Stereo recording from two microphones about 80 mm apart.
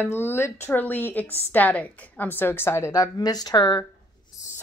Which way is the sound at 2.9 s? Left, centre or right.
Left.